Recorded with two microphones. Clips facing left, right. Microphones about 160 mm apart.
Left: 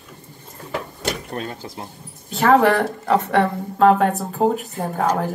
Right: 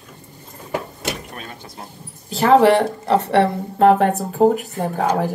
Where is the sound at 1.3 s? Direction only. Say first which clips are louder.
Left 7 dB; 30° left (ahead or behind).